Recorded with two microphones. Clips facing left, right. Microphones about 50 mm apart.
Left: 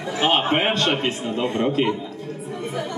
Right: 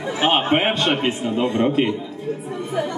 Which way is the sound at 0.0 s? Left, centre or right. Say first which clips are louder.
Right 1 dB; centre.